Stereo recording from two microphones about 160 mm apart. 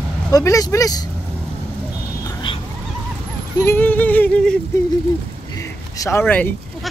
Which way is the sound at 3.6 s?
10° left (ahead or behind).